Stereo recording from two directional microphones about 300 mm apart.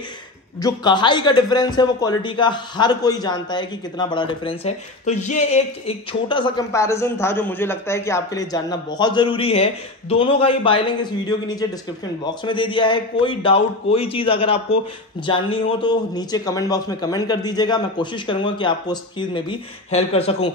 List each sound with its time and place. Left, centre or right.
0.6 s a man's voice: centre